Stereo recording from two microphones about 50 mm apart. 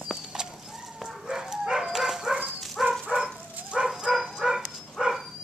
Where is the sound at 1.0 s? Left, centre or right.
Centre.